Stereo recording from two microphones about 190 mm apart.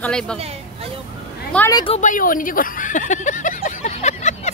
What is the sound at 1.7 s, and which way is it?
Speech, 30° left (ahead or behind).